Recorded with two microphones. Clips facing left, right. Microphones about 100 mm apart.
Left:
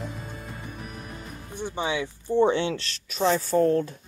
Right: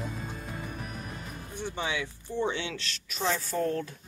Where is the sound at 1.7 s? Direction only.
25° left (ahead or behind).